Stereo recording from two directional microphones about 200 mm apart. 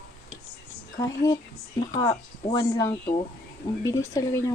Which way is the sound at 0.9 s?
20° left (ahead or behind).